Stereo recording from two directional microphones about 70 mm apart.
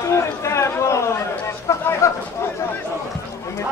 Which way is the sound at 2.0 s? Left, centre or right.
Left.